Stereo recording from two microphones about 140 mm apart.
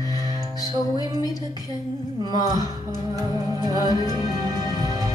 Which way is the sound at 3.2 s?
25° right (ahead or behind).